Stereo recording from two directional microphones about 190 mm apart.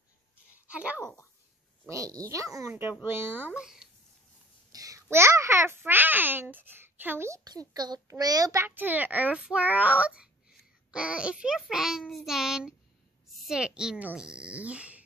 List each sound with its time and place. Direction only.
0.7 s a child's voice: 5° right (ahead or behind)
4.7 s babbling: 20° right (ahead or behind)
5.1 s a child's voice: 15° right (ahead or behind)